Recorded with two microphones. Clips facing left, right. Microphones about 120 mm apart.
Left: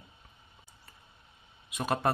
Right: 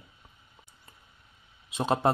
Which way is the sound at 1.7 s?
25° right (ahead or behind).